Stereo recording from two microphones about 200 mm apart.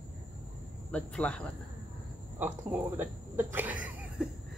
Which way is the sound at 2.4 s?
10° right (ahead or behind).